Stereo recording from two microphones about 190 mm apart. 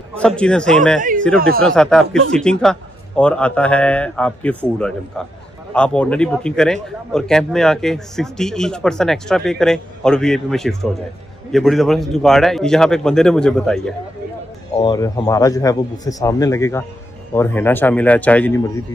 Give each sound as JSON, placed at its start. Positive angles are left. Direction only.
{"t": 0.2, "sound": "a man's voice", "side_deg": 5}
{"t": 14.8, "sound": "a man's voice", "side_deg": 20}